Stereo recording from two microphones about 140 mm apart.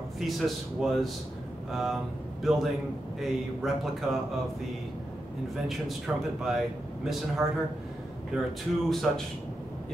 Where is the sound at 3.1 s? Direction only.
Centre (ahead or behind).